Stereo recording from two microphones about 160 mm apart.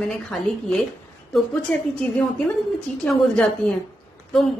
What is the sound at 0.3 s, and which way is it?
A woman's voice, centre (ahead or behind).